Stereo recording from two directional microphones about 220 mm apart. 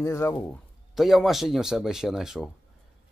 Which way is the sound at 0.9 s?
Centre (ahead or behind).